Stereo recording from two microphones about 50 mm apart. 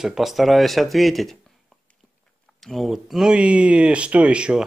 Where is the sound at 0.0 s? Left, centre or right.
Centre.